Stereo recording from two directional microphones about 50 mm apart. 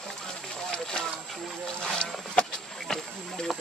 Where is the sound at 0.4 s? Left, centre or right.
Centre.